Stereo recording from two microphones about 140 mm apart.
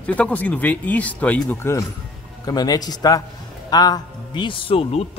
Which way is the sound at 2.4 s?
30° left (ahead or behind).